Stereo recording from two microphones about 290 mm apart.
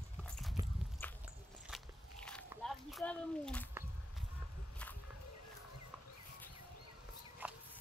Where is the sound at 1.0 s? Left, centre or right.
Centre.